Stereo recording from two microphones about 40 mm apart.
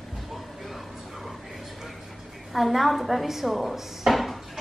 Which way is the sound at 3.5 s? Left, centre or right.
Centre.